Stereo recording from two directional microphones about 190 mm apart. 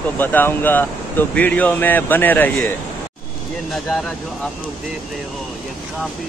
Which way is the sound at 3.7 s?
Centre (ahead or behind).